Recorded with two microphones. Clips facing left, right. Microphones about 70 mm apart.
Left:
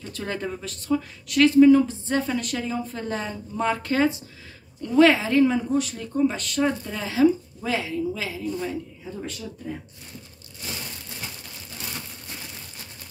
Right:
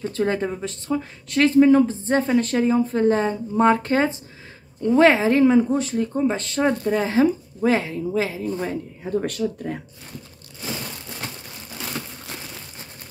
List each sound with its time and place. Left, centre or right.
0.0 s speech: right
9.0 s speech: right